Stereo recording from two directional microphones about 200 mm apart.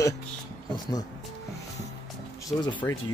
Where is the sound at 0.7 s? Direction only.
20° left (ahead or behind).